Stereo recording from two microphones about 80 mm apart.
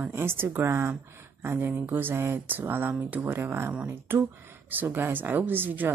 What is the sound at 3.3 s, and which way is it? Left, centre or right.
Speech, right.